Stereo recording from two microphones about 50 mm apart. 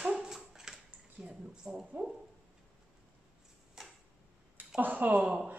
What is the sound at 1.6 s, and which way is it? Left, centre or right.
Speech, right.